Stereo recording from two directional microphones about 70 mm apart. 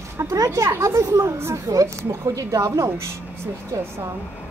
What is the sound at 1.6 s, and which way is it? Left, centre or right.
Speech, right.